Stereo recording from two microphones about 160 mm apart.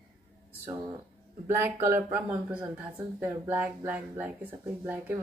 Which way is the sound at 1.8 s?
15° right (ahead or behind).